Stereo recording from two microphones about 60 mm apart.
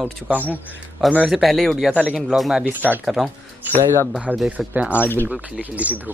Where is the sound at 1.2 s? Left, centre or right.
Centre.